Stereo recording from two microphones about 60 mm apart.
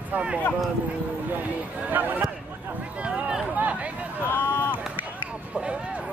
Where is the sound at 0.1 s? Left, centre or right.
Centre.